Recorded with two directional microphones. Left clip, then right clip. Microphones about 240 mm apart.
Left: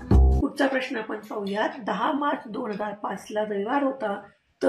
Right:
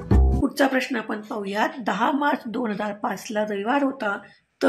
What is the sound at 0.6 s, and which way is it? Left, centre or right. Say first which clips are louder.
Speech: right 3 dB; right.